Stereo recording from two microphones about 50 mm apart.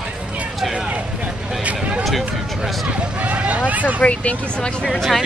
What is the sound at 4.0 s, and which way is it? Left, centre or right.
Speech, left.